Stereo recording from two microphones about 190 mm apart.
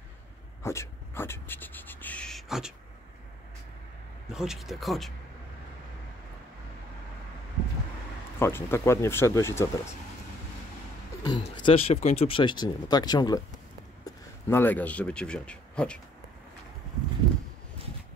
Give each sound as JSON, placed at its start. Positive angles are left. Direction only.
{"t": 0.6, "sound": "speech", "side_deg": 15}
{"t": 4.3, "sound": "speech", "side_deg": 0}
{"t": 8.4, "sound": "speech", "side_deg": 10}
{"t": 11.2, "sound": "speech", "side_deg": 25}